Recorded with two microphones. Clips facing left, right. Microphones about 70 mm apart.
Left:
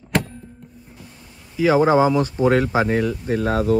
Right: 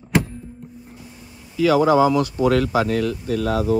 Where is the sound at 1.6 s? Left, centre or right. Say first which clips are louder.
Even; left.